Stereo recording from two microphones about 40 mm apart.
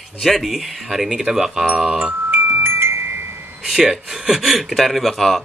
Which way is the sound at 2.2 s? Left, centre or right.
Right.